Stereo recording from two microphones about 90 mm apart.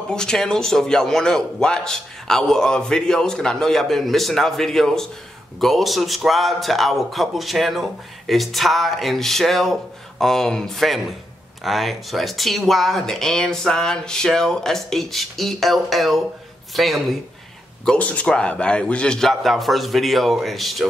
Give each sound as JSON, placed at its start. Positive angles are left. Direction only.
{"t": 0.1, "sound": "a man's voice", "side_deg": 5}
{"t": 17.8, "sound": "a man's voice", "side_deg": 15}